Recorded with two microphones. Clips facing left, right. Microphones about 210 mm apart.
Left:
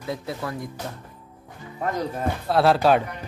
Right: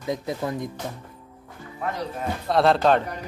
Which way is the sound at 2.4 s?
5° left (ahead or behind).